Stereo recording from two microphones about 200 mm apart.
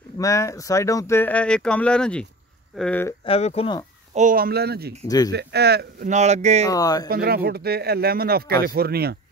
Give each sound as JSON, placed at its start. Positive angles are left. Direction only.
{"t": 0.2, "sound": "speech", "side_deg": 15}
{"t": 3.3, "sound": "speech", "side_deg": 30}
{"t": 4.1, "sound": "a man's voice", "side_deg": -40}
{"t": 5.0, "sound": "speech", "side_deg": 20}
{"t": 5.3, "sound": "speech", "side_deg": -55}
{"t": 6.0, "sound": "speech", "side_deg": -35}
{"t": 6.6, "sound": "speech", "side_deg": 20}
{"t": 7.1, "sound": "a man's voice", "side_deg": -50}